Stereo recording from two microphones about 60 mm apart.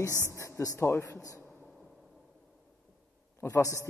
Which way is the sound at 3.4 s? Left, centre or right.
Left.